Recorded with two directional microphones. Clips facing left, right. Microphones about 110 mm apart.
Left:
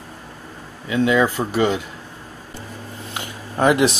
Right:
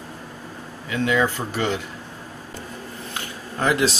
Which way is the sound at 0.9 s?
20° left (ahead or behind).